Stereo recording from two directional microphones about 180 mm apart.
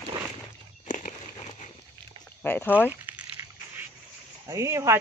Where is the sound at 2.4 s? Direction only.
10° left (ahead or behind).